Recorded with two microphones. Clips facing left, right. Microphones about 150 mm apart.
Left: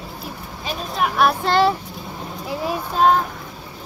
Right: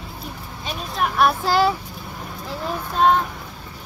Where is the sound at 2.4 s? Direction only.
10° left (ahead or behind).